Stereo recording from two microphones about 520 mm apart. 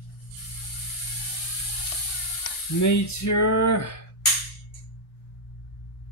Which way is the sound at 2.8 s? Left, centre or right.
Left.